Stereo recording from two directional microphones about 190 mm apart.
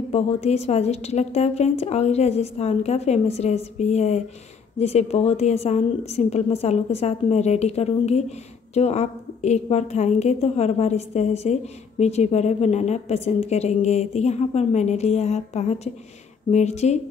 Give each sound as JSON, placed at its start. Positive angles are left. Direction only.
{"t": 0.1, "sound": "a woman's voice", "side_deg": 35}